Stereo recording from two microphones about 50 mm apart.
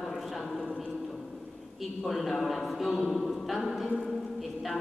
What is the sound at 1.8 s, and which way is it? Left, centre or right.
A man's voice, centre.